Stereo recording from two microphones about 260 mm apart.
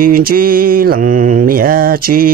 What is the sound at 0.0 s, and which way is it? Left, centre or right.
Mantra, right.